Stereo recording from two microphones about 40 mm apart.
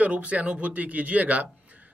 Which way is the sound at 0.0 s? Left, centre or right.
Right.